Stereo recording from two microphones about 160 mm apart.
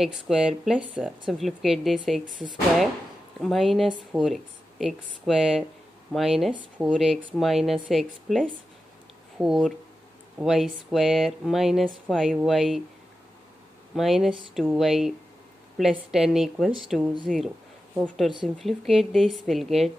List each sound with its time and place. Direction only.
0.0 s speech: centre (ahead or behind)
2.2 s speech: 55° right (ahead or behind)
3.3 s speech: centre (ahead or behind)
13.9 s speech: centre (ahead or behind)